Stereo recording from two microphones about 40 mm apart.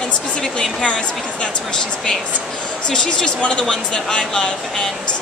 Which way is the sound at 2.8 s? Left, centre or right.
Centre.